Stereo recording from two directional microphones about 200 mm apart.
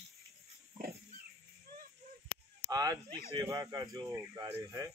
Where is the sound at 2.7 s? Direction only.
20° right (ahead or behind).